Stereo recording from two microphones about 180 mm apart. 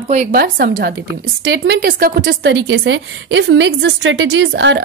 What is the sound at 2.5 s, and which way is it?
A woman's voice, 85° right.